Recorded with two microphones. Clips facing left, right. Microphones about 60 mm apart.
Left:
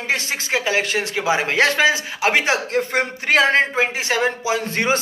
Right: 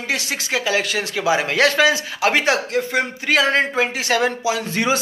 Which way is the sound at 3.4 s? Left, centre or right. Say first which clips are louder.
Left 1 dB; left.